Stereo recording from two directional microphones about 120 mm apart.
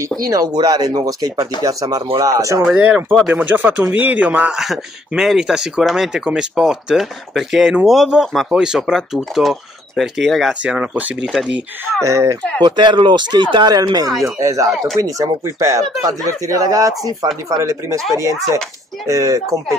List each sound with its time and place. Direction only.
0.3 s speech: 35° right (ahead or behind)
2.6 s speech: 10° right (ahead or behind)
3.3 s speech: 15° right (ahead or behind)
11.8 s speech: 25° right (ahead or behind)
12.6 s speech: 40° right (ahead or behind)
19.0 s speech: 25° right (ahead or behind)